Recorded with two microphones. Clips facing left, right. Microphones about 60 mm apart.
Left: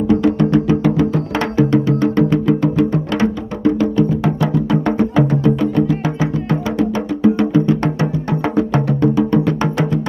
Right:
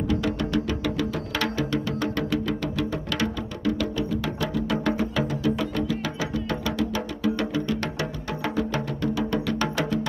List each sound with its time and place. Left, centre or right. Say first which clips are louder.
0.1 s music: left 13 dB; left
5.2 s music: left 10 dB; left
5.6 s music: left 10 dB; left